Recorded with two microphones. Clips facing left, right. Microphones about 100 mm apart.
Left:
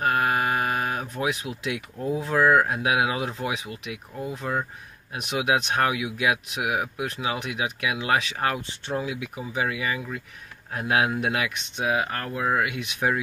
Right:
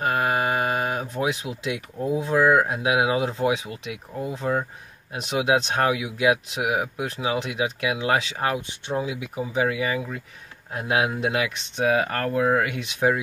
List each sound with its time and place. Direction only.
0.0 s a sound: 25° right (ahead or behind)
2.0 s speech: 20° right (ahead or behind); by 10.2 s 35° right (ahead or behind)
10.7 s speech: 25° right (ahead or behind)